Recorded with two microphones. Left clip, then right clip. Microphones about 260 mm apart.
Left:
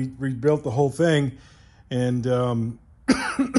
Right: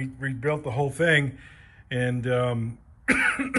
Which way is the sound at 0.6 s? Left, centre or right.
Left.